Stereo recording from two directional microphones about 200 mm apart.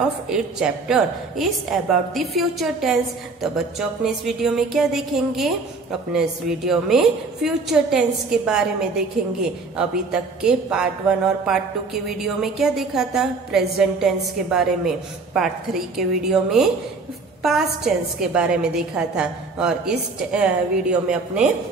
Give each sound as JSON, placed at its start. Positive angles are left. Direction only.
{"t": 0.3, "sound": "speech", "side_deg": -5}
{"t": 10.4, "sound": "speech", "side_deg": -5}